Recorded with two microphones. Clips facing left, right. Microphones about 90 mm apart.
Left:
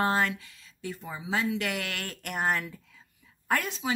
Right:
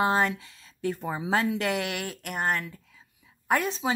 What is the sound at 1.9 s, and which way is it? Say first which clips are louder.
Speech: right 4 dB; 15° right (ahead or behind).